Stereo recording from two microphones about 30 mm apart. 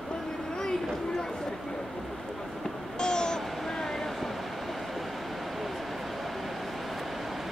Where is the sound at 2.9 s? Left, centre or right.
Left.